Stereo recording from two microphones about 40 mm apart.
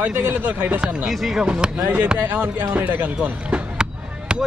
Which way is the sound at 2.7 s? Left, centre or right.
Right.